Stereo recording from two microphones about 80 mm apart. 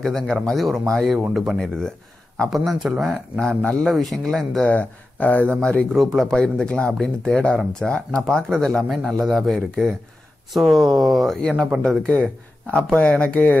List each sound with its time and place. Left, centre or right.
0.0 s speech: centre
1.6 s speech: centre
2.5 s speech: centre
3.3 s a man's voice: centre
4.6 s a man's voice: centre
12.7 s a man's voice: centre